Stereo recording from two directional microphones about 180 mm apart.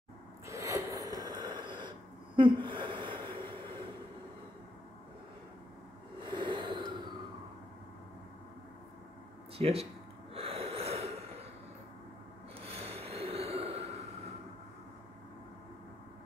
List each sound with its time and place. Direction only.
0.5 s snort: 15° right (ahead or behind)
6.2 s snort: 25° right (ahead or behind)
9.6 s speech: 35° right (ahead or behind)
10.3 s snort: 35° right (ahead or behind)
12.6 s snort: 35° right (ahead or behind)